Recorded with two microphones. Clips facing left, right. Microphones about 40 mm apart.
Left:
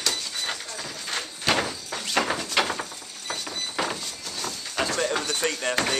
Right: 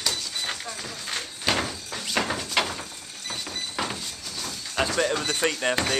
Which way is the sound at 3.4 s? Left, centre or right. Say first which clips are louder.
Left 2 dB; centre.